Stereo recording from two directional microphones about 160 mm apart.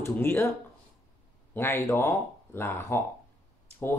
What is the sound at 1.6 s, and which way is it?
Speech, 15° left (ahead or behind).